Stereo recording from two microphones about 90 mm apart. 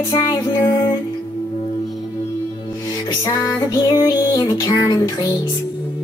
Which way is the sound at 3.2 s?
45° left (ahead or behind).